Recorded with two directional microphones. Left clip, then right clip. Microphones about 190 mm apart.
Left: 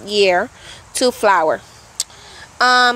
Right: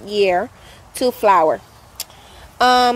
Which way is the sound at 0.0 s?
5° right (ahead or behind).